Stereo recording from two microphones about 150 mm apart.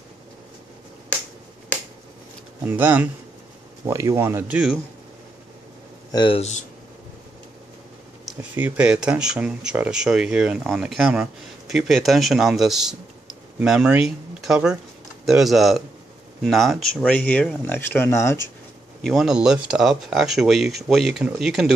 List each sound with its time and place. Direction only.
2.6 s speech: 10° right (ahead or behind)
6.1 s speech: 30° left (ahead or behind)
8.3 s speech: 10° right (ahead or behind); by 18.5 s 15° left (ahead or behind)
18.9 s speech: centre (ahead or behind)